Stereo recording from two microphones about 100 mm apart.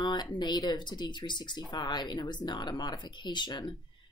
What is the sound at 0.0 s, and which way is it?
Speech, 45° left (ahead or behind).